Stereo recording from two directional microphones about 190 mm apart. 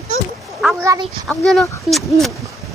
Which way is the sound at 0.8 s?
15° right (ahead or behind).